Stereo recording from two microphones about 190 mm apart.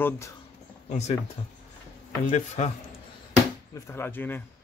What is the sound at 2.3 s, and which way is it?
Speech, 40° left (ahead or behind).